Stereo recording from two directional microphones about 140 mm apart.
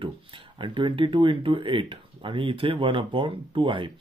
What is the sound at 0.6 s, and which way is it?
Speech, 35° right (ahead or behind).